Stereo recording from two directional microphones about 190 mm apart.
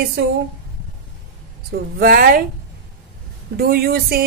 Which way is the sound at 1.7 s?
50° right (ahead or behind).